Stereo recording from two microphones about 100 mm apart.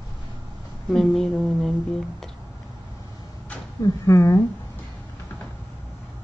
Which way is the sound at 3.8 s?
35° left (ahead or behind).